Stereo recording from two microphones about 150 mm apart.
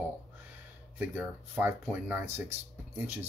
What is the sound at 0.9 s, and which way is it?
Speech, 10° right (ahead or behind).